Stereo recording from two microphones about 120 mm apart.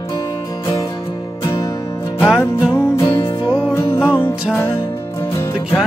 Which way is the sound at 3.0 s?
40° left (ahead or behind).